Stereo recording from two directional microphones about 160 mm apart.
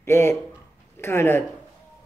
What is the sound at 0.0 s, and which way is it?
A man's voice, 15° left (ahead or behind).